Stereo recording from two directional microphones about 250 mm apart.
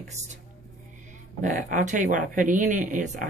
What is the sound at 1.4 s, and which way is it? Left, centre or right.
Speech, right.